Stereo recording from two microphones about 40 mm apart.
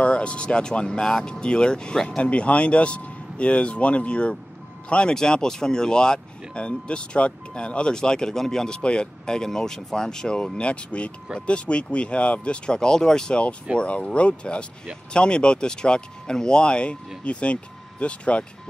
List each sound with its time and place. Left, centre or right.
0.0 s speech: left
5.1 s speech: centre
13.3 s speech: left